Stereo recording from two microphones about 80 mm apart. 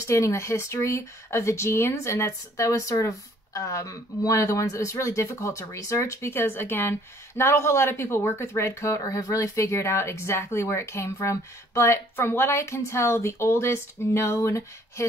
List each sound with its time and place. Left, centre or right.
0.0 s speech: left